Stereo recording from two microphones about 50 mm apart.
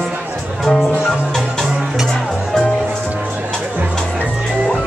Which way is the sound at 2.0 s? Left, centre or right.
Centre.